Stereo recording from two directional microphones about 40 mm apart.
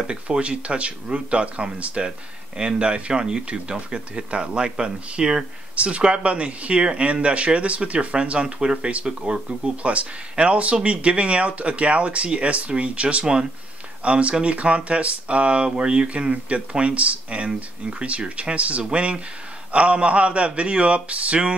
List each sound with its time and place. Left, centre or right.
0.0 s speech: right
13.2 s speech: centre
14.0 s speech: right